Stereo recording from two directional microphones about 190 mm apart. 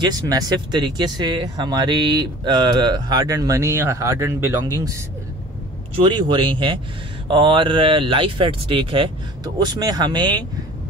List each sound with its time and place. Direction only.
0.0 s speech: 20° right (ahead or behind)
6.0 s speech: 25° right (ahead or behind)